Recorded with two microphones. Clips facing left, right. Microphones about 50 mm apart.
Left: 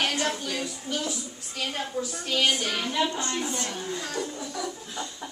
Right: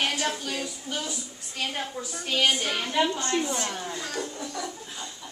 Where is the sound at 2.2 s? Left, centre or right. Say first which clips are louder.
Right 1 dB; centre.